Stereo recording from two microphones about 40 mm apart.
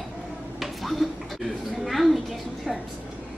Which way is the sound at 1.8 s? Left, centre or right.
Centre.